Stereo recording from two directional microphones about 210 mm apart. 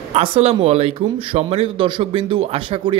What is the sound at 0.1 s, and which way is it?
Speech, 30° right (ahead or behind).